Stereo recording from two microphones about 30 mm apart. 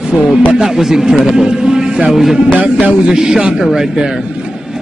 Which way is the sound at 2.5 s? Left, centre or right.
Right.